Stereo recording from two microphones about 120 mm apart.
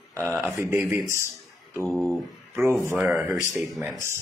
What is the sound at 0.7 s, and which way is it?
Speech, 15° right (ahead or behind).